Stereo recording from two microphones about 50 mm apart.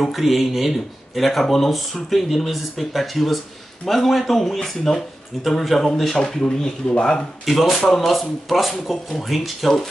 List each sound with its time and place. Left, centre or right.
0.0 s speech: centre
6.4 s speech: centre
7.4 s speech: centre